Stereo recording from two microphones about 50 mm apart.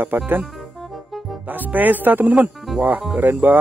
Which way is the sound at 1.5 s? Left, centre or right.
Right.